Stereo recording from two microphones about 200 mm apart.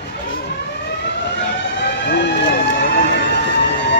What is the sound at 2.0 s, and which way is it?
Vehicle, 60° left (ahead or behind).